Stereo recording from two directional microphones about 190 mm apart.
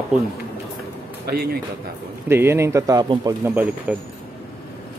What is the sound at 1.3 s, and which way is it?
Speech, 55° right (ahead or behind).